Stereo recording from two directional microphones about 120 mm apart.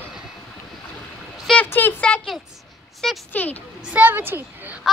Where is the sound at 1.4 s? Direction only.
10° left (ahead or behind).